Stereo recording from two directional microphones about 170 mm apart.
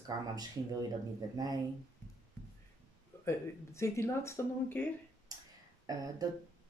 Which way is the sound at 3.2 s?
15° left (ahead or behind).